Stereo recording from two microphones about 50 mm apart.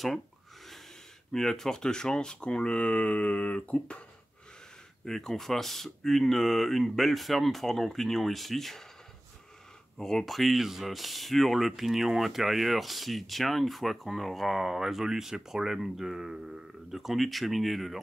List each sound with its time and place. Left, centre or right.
1.3 s speech: centre
5.0 s speech: centre
9.9 s speech: centre